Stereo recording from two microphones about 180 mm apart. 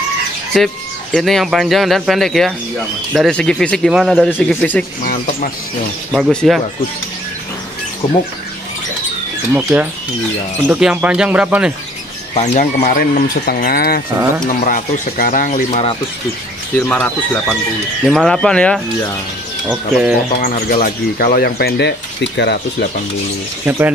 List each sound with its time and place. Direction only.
0.5 s a man's voice: centre (ahead or behind)
5.0 s speech: 50° left (ahead or behind)
6.1 s a man's voice: centre (ahead or behind)
9.6 s a man's voice: 5° right (ahead or behind)
12.7 s speech: 55° left (ahead or behind)
16.9 s a man's voice: 5° left (ahead or behind)
19.7 s speech: 5° right (ahead or behind)
20.6 s speech: 55° left (ahead or behind); by 22.8 s 70° left (ahead or behind)
23.6 s speech: 10° right (ahead or behind)